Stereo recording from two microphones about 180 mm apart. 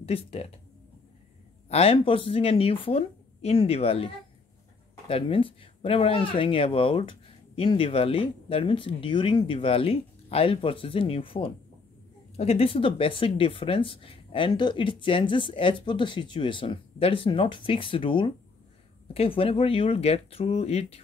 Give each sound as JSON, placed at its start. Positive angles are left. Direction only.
{"t": 0.0, "sound": "speech", "side_deg": 35}
{"t": 1.7, "sound": "speech", "side_deg": 35}